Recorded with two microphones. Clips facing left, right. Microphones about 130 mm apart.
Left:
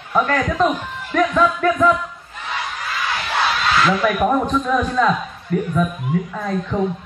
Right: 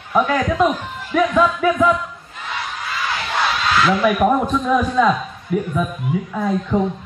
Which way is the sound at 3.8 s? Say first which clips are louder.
Right 3 dB; 5° right (ahead or behind).